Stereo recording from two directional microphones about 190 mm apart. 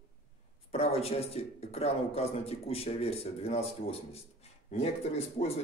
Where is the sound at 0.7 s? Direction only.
30° left (ahead or behind).